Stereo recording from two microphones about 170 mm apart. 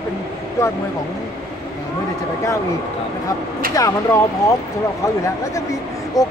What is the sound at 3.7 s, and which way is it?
Speech, 20° left (ahead or behind).